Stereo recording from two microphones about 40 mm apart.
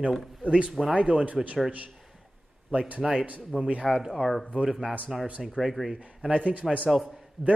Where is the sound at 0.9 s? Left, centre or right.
Right.